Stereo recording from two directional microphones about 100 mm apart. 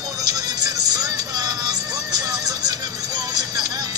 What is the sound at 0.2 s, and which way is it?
Music, 40° right (ahead or behind).